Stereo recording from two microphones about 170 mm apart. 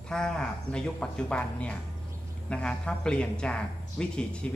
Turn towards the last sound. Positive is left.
turn(degrees=5)  # may be behind; listen again after turning